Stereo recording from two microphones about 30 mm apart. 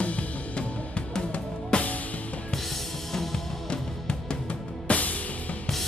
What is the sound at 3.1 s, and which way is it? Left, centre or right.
Music, centre.